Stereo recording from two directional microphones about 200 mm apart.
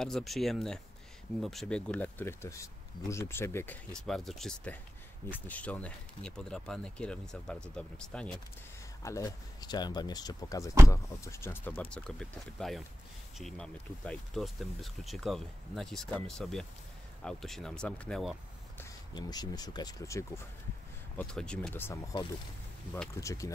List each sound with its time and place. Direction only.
0.0 s speech: centre (ahead or behind)
9.0 s speech: 15° left (ahead or behind)
18.8 s speech: 20° left (ahead or behind)
21.2 s speech: 5° left (ahead or behind)
23.2 s speech: 15° left (ahead or behind)